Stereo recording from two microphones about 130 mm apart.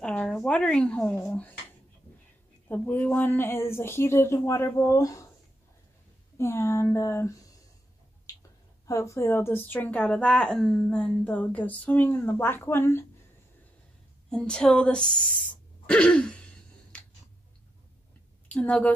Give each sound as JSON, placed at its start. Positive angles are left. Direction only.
{"t": 0.0, "sound": "a sound", "side_deg": 5}
{"t": 2.7, "sound": "speech", "side_deg": 15}
{"t": 6.3, "sound": "speech", "side_deg": 20}
{"t": 14.3, "sound": "speech", "side_deg": 5}
{"t": 15.9, "sound": "throat clearing", "side_deg": 10}
{"t": 18.5, "sound": "speech", "side_deg": 10}